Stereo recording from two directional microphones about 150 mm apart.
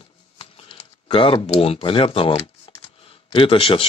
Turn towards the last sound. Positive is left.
turn(degrees=40)  # may be behind; listen again after turning